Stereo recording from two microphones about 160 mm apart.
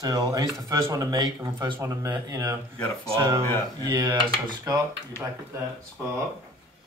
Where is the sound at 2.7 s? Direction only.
5° left (ahead or behind).